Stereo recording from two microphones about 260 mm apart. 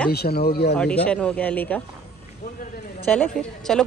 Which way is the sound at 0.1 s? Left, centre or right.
Left.